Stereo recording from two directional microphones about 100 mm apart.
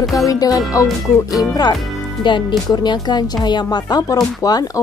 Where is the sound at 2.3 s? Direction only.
50° left (ahead or behind).